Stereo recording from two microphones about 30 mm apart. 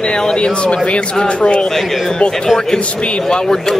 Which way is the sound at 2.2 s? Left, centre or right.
Left.